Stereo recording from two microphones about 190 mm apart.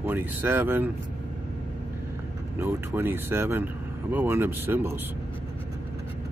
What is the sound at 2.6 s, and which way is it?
Speech, 10° right (ahead or behind).